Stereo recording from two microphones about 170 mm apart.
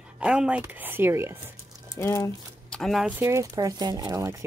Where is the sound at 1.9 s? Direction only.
20° left (ahead or behind).